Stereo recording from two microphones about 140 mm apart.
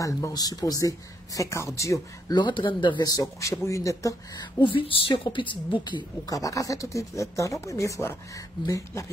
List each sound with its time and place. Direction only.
0.0 s a woman's voice: 25° left (ahead or behind)
4.6 s a woman's voice: 35° left (ahead or behind)